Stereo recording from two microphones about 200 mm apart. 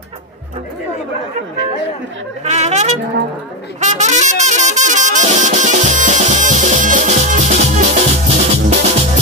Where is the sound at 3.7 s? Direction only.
35° right (ahead or behind).